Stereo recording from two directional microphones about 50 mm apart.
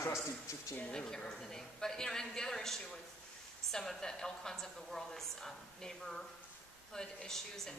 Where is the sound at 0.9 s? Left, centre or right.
Centre.